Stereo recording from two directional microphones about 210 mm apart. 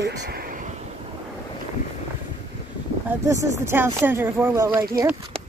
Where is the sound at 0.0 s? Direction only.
55° right (ahead or behind).